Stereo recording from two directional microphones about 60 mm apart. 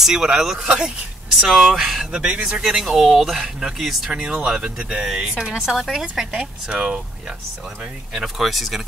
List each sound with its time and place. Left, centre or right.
0.0 s speech: centre
4.1 s speech: centre
8.1 s speech: centre